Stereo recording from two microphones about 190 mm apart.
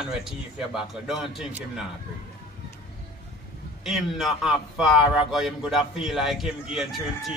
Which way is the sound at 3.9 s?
Centre (ahead or behind).